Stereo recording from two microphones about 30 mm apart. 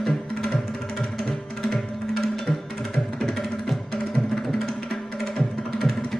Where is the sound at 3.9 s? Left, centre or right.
Left.